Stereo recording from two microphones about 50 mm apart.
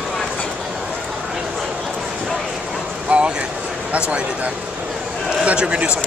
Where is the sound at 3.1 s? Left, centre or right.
Right.